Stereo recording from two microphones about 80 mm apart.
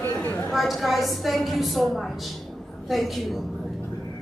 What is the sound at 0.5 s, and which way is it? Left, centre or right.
A woman's voice, centre.